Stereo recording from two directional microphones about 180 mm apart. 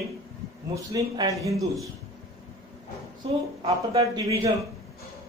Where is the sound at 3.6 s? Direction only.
30° right (ahead or behind).